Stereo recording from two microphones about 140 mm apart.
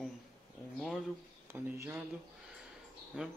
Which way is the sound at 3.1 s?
5° right (ahead or behind).